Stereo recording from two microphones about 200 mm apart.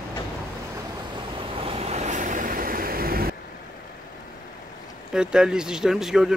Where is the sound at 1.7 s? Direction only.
30° right (ahead or behind); by 3.3 s 45° right (ahead or behind).